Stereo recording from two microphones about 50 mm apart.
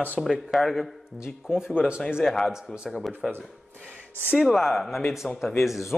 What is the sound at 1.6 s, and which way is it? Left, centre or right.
Speech, centre.